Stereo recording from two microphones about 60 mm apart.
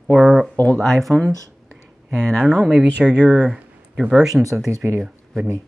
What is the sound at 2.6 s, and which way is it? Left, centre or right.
Speech, centre.